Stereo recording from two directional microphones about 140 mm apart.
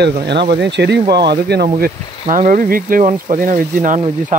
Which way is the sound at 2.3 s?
70° right (ahead or behind).